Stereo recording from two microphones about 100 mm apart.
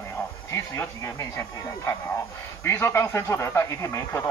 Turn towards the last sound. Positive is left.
turn(degrees=25)  # may be behind; listen again after turning